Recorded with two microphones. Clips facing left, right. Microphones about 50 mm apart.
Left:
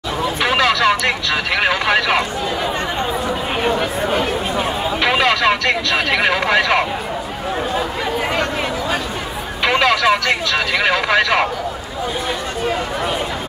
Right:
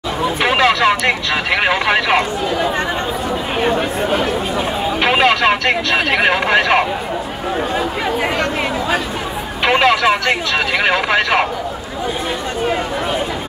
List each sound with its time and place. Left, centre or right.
0.4 s speech: right
5.0 s a sound: right
9.7 s speech: right